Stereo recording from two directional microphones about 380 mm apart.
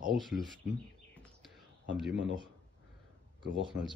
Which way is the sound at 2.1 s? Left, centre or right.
Right.